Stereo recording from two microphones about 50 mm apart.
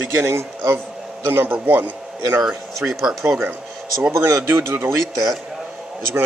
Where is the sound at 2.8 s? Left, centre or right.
Centre.